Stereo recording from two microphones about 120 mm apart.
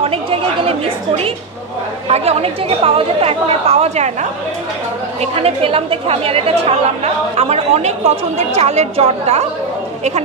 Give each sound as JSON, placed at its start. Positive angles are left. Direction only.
{"t": 0.0, "sound": "a sound", "side_deg": -55}
{"t": 2.0, "sound": "a woman's voice", "side_deg": -60}
{"t": 5.2, "sound": "a woman's voice", "side_deg": -55}